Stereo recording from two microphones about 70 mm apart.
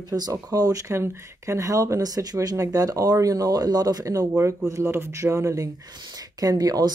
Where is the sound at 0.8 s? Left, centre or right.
Right.